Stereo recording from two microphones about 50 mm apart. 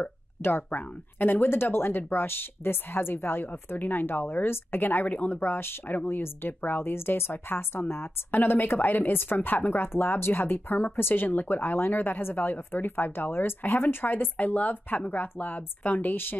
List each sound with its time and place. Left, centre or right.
0.4 s a woman's voice: left